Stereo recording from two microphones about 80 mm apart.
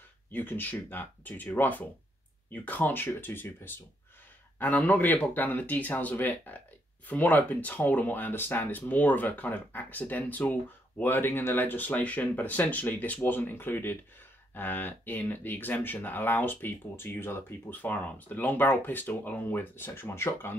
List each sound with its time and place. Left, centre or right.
0.3 s speech: left